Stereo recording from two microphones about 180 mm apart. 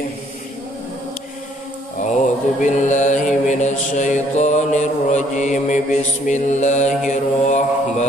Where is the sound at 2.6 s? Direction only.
40° left (ahead or behind).